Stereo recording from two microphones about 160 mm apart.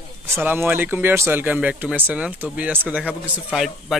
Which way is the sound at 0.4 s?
10° right (ahead or behind).